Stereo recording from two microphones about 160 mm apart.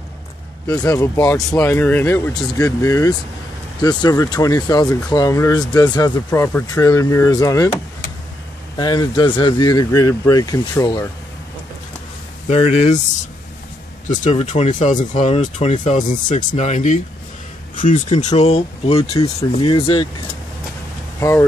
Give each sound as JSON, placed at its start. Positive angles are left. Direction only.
{"t": 0.7, "sound": "speech", "side_deg": 20}
{"t": 12.4, "sound": "speech", "side_deg": 40}
{"t": 14.1, "sound": "speech", "side_deg": 50}
{"t": 17.9, "sound": "speech", "side_deg": 30}
{"t": 21.2, "sound": "speech", "side_deg": 15}